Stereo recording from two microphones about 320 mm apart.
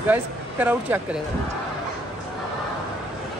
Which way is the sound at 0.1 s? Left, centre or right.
Centre.